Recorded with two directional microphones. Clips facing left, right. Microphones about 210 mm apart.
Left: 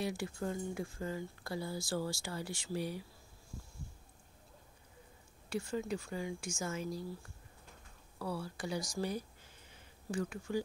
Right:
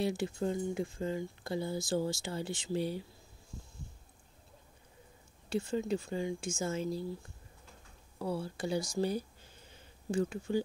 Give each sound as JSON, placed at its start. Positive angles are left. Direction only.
{"t": 0.0, "sound": "speech", "side_deg": -25}
{"t": 5.5, "sound": "speech", "side_deg": -25}
{"t": 8.2, "sound": "speech", "side_deg": -25}